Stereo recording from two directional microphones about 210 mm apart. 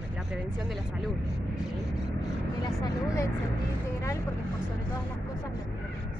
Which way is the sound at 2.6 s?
20° left (ahead or behind).